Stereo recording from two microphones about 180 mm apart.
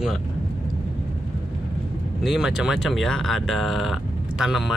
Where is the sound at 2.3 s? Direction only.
5° right (ahead or behind).